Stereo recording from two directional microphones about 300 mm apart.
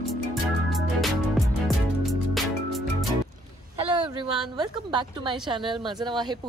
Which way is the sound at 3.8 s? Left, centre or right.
Centre.